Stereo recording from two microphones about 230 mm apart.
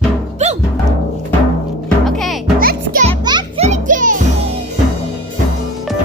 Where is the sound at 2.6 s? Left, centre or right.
Right.